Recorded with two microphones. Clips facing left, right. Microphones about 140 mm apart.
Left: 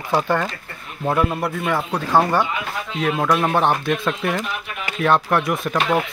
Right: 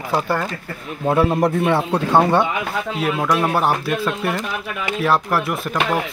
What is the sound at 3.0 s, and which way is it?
Speech, 5° right (ahead or behind).